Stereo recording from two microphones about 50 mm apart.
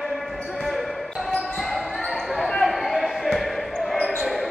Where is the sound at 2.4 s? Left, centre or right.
Centre.